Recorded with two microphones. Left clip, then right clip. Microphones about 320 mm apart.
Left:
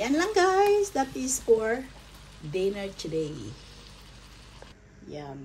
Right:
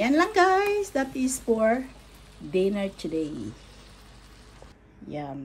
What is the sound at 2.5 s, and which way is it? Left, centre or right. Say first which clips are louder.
Speech: right 3 dB; centre.